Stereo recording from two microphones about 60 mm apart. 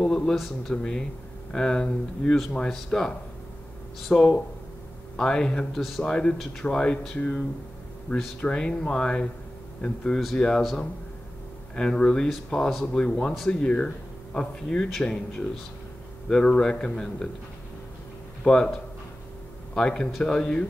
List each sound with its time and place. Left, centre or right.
0.0 s a sound: centre
0.4 s speech: centre
5.8 s speech: centre
6.0 s speech: centre
11.7 s speech: centre
18.4 s speech: centre
19.7 s a man's voice: centre